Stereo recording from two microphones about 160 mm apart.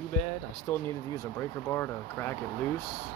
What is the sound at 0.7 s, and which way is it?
Speech, 10° left (ahead or behind).